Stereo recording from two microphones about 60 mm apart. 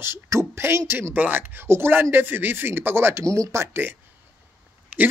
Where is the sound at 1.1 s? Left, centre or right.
Right.